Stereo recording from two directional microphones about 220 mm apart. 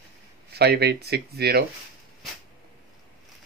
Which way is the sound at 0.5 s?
45° right (ahead or behind).